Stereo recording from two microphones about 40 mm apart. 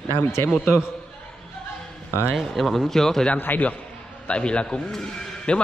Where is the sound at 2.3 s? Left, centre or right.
Centre.